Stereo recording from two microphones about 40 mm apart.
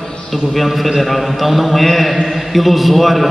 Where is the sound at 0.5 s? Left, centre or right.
Centre.